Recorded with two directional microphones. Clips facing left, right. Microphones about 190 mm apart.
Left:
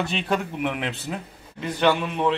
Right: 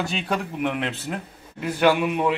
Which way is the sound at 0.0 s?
Centre (ahead or behind).